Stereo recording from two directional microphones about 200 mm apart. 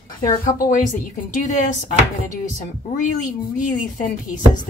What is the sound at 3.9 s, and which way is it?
Speech, 40° left (ahead or behind).